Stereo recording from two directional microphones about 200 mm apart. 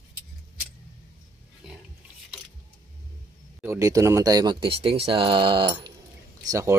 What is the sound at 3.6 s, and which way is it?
Speech, 15° right (ahead or behind).